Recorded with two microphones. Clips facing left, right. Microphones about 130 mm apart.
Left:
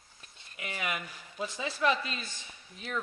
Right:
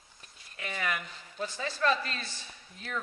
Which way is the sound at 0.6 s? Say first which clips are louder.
Right 1 dB; 10° left (ahead or behind).